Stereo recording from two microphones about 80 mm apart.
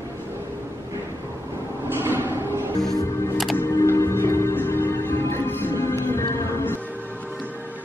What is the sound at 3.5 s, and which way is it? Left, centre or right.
Music, left.